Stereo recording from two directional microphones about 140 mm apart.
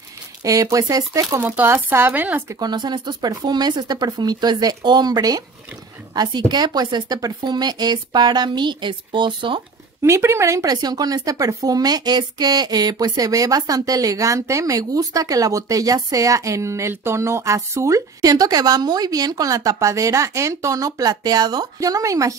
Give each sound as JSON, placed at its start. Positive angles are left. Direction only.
{"t": 0.4, "sound": "speech", "side_deg": -25}
{"t": 2.6, "sound": "a woman's voice", "side_deg": -35}
{"t": 10.0, "sound": "speech", "side_deg": -20}